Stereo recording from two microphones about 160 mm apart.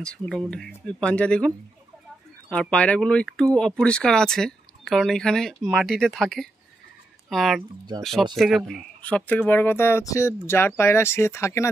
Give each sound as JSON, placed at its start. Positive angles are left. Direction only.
{"t": 0.0, "sound": "speech", "side_deg": 5}
{"t": 2.5, "sound": "speech", "side_deg": 5}
{"t": 9.3, "sound": "speech", "side_deg": 10}